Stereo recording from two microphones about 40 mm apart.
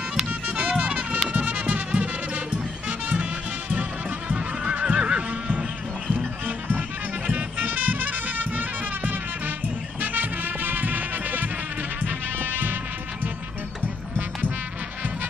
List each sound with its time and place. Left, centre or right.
0.3 s music: right
1.3 s music: right
4.3 s neigh: right
6.1 s music: right